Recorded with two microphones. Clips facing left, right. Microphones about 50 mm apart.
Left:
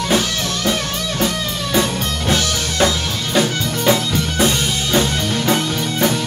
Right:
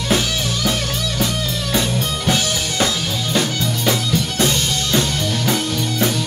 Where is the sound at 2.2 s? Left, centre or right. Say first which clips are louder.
Left 2 dB; centre.